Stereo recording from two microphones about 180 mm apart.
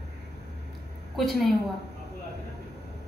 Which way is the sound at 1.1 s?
Centre (ahead or behind).